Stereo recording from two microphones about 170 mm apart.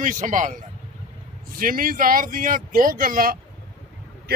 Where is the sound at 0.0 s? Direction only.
50° right (ahead or behind).